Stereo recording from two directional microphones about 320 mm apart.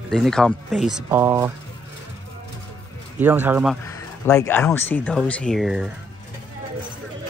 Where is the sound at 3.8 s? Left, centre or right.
Centre.